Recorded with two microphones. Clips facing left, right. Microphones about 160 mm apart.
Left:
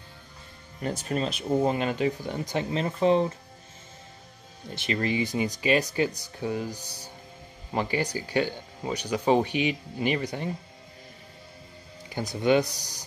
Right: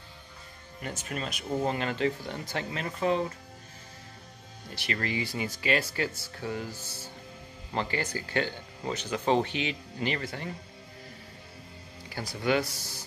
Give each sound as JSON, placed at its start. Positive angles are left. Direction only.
{"t": 0.8, "sound": "speech", "side_deg": 35}
{"t": 4.7, "sound": "speech", "side_deg": 20}
{"t": 12.1, "sound": "speech", "side_deg": 20}